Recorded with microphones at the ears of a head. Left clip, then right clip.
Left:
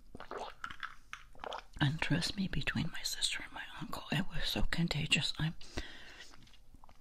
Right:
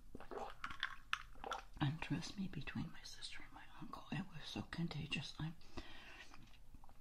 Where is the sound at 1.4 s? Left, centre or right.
Left.